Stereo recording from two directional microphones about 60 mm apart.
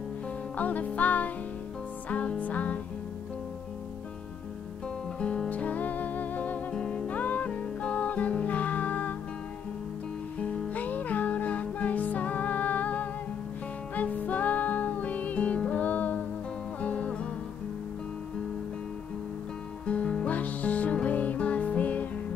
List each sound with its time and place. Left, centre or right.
0.6 s music: left
5.2 s music: centre
5.5 s music: left
6.7 s music: centre
10.4 s music: left
19.9 s music: centre